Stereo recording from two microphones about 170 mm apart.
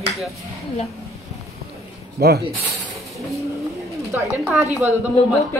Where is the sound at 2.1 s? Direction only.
70° right (ahead or behind).